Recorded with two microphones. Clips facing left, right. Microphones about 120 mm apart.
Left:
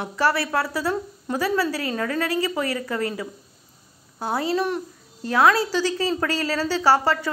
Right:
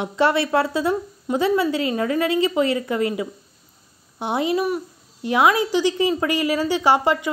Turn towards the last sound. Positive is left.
turn(degrees=-15)  # may be behind; listen again after turning